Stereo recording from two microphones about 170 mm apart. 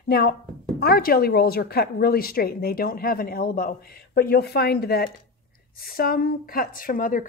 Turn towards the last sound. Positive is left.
turn(degrees=55)  # may be behind; listen again after turning